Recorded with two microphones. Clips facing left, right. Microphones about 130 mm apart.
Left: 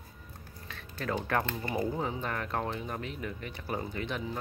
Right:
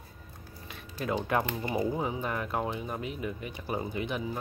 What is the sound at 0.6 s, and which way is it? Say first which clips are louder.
Speech: right 2 dB; 15° right (ahead or behind).